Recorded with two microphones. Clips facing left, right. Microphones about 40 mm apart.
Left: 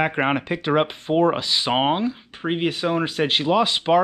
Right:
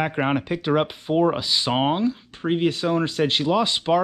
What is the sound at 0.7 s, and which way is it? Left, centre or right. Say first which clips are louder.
Speech: left 2 dB; left.